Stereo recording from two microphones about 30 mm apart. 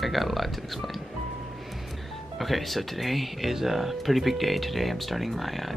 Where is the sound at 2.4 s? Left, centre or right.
Centre.